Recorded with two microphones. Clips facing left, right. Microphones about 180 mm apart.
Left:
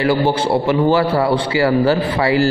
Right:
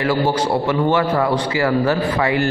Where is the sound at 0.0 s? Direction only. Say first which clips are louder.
Left 2 dB; 30° left (ahead or behind).